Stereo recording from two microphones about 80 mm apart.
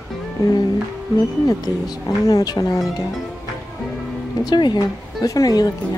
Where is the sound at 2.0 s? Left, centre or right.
Left.